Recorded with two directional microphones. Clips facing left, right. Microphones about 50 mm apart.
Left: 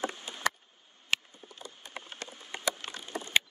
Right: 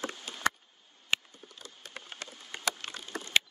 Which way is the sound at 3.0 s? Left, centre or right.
Left.